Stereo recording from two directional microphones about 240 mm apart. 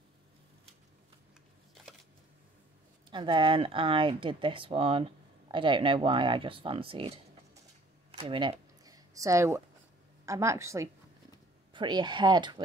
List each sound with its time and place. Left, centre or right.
3.1 s speech: centre
8.1 s a sound: centre
10.2 s a woman's voice: centre